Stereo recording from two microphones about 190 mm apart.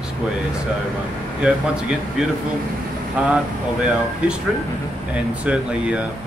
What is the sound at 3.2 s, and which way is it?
Speech, 5° right (ahead or behind).